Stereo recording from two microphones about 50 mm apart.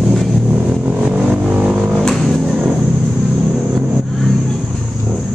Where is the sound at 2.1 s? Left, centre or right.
Centre.